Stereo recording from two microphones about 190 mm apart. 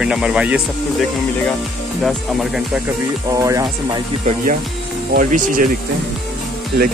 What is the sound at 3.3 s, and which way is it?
Speech, 20° right (ahead or behind).